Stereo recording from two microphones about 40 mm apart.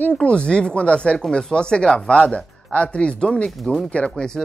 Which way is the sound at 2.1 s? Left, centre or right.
Left.